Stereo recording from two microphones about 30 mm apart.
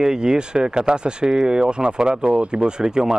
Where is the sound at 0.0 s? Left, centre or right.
Right.